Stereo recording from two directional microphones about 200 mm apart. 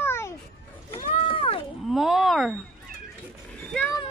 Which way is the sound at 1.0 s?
30° left (ahead or behind).